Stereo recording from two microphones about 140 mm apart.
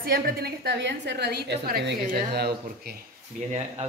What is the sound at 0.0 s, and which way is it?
Speech, 90° right.